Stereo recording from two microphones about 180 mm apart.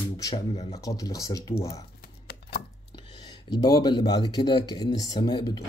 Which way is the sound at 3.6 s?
20° left (ahead or behind).